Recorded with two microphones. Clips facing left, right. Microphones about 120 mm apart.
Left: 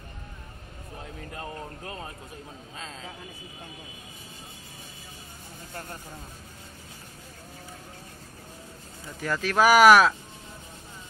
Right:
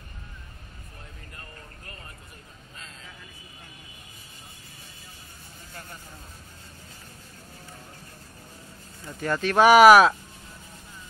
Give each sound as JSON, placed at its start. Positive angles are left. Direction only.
{"t": 2.8, "sound": "speech", "side_deg": 90}
{"t": 9.2, "sound": "speech", "side_deg": 0}